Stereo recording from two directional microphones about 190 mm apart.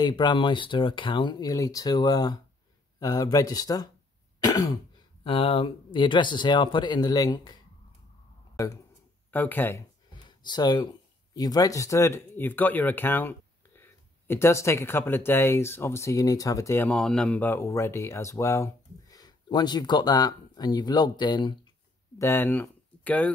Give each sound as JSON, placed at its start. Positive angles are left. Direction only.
{"t": 0.0, "sound": "speech", "side_deg": 25}
{"t": 4.4, "sound": "throat clearing", "side_deg": 20}
{"t": 5.2, "sound": "speech", "side_deg": 30}
{"t": 10.2, "sound": "speech", "side_deg": 25}
{"t": 22.2, "sound": "speech", "side_deg": 10}